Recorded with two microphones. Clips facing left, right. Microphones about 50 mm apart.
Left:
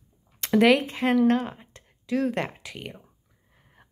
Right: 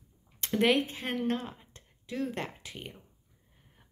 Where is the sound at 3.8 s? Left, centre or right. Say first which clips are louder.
Left 7 dB; left.